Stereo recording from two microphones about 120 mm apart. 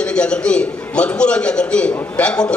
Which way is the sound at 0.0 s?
10° left (ahead or behind).